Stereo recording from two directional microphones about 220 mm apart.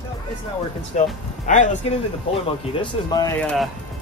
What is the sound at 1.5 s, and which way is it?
Speech, 35° left (ahead or behind).